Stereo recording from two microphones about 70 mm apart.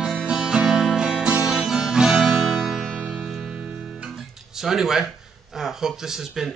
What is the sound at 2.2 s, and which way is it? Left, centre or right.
Music, centre.